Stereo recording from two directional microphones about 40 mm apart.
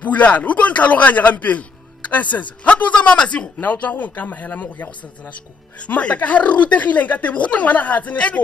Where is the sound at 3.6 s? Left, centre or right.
Left.